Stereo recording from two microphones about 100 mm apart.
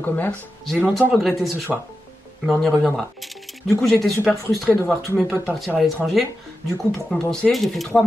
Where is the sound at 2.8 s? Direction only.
Centre (ahead or behind).